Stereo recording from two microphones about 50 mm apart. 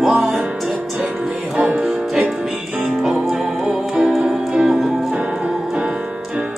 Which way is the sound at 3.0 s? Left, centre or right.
Centre.